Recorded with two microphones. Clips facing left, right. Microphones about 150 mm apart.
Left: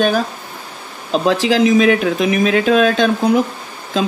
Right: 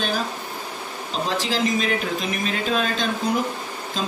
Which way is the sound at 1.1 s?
70° left (ahead or behind).